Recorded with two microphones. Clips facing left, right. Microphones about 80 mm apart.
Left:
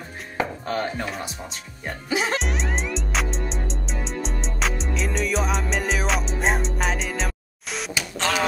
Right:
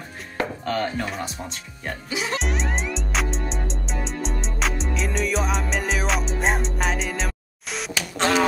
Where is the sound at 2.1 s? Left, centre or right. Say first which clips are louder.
Left 4 dB; left.